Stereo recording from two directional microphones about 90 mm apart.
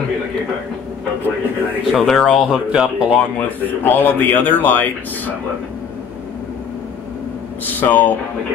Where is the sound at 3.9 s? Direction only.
20° left (ahead or behind).